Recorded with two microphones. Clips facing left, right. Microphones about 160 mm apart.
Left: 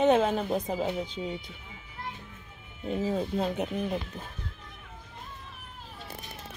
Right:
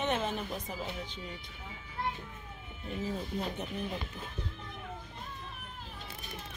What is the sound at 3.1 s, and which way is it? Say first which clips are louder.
Speech: left 7 dB; 90° left.